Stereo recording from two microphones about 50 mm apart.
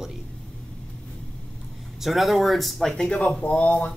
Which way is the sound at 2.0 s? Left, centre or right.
Centre.